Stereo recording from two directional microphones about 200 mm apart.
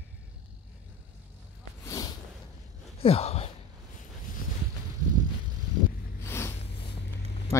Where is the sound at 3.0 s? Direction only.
30° left (ahead or behind).